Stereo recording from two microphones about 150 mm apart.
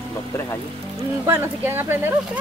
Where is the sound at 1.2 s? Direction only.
15° right (ahead or behind).